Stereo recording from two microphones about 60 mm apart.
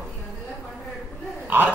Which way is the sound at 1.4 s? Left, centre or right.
Right.